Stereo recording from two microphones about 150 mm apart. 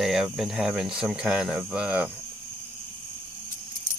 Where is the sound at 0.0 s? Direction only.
Centre (ahead or behind).